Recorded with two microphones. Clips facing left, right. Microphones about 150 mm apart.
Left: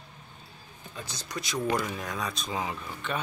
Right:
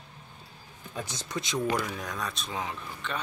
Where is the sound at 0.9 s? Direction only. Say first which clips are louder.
Right 3 dB; 20° right (ahead or behind).